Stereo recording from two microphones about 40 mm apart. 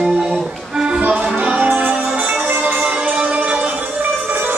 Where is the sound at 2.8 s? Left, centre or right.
Right.